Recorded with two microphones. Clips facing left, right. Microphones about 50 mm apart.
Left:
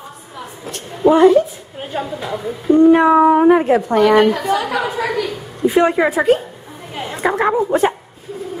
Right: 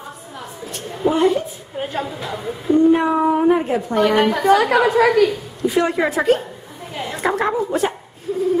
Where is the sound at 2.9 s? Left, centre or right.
Left.